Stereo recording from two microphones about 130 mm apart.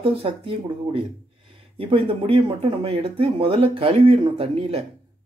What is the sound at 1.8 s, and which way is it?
Speech, 45° right (ahead or behind).